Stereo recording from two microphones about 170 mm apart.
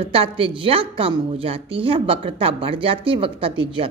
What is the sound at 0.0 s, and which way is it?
A woman's voice, 35° right (ahead or behind).